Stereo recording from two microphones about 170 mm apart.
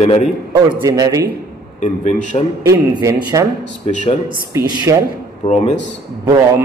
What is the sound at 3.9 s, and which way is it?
Speech, 45° left (ahead or behind).